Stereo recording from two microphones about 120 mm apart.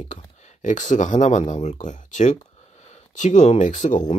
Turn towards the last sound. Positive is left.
turn(degrees=90)